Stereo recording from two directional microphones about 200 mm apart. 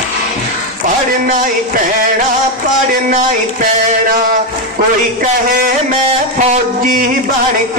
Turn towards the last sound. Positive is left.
turn(degrees=-40)  # may be behind; listen again after turning